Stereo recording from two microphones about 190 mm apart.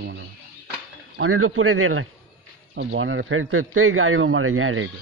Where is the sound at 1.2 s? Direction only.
90° right.